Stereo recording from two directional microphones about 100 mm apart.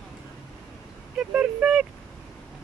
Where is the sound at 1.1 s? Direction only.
10° right (ahead or behind).